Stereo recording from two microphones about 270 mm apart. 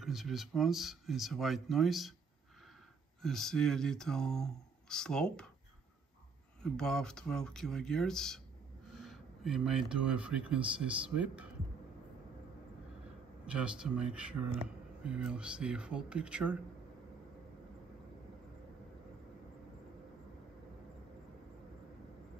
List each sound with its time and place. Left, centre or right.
0.0 s speech: centre
3.2 s speech: centre
6.6 s speech: centre
13.5 s speech: centre